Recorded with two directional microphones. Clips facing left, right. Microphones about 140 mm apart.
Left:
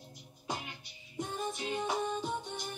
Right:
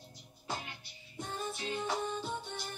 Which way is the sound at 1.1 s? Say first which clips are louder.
Left 3 dB; 15° left (ahead or behind).